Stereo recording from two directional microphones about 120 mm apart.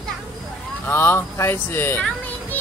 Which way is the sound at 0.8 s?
15° left (ahead or behind).